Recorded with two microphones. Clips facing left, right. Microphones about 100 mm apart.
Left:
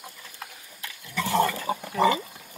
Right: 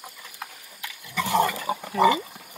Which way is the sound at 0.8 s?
15° right (ahead or behind).